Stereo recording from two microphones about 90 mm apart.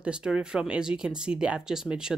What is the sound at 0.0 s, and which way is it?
Speech, 10° right (ahead or behind).